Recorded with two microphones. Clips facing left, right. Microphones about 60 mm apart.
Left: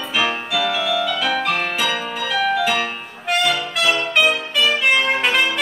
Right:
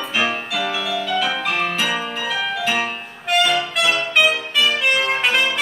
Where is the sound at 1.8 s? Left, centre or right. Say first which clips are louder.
Even; centre.